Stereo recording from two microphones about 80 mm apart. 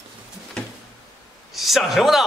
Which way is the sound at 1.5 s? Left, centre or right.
Centre.